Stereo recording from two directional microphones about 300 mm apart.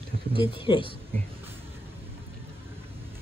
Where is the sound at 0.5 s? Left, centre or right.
Centre.